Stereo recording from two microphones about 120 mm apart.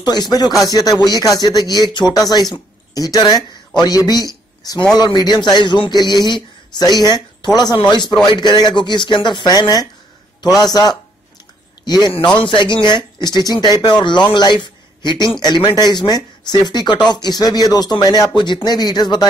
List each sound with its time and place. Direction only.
0.0 s a man's voice: 35° left (ahead or behind)